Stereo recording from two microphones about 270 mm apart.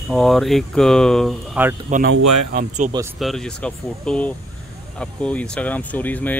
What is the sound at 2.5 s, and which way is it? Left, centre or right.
Speech, right.